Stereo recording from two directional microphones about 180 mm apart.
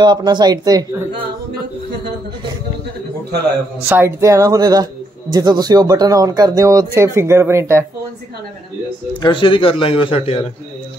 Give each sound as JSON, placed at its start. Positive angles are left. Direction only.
{"t": 0.0, "sound": "speech", "side_deg": -25}
{"t": 3.9, "sound": "speech", "side_deg": -15}
{"t": 9.2, "sound": "speech", "side_deg": 30}